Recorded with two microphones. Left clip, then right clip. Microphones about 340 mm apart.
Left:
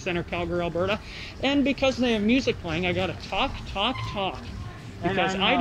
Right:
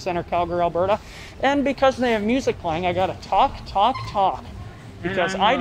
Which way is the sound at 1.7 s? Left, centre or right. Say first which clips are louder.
Right 5 dB; right.